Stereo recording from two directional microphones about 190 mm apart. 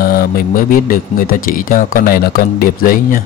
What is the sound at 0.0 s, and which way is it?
Speech, 50° left (ahead or behind).